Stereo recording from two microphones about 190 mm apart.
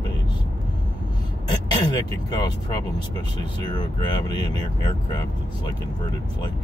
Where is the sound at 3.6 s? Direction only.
25° left (ahead or behind).